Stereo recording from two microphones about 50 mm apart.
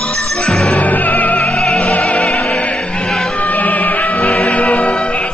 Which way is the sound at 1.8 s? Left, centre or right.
Left.